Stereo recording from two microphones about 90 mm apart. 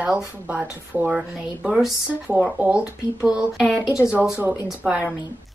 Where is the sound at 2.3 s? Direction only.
20° right (ahead or behind).